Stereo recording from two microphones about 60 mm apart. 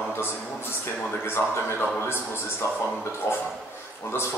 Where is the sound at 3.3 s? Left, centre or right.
Left.